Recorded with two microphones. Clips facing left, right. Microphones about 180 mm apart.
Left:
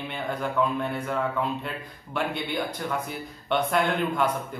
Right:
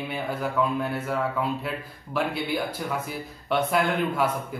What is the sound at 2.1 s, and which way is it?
Speech, 5° right (ahead or behind).